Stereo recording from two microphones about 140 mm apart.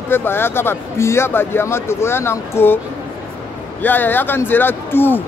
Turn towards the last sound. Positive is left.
turn(degrees=15)  # may be behind; listen again after turning